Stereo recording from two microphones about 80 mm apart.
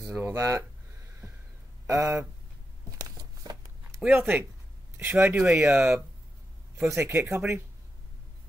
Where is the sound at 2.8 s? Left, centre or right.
Right.